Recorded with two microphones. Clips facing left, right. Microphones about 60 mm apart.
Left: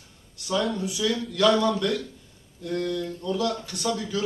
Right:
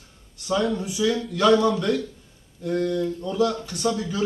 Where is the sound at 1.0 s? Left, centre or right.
Right.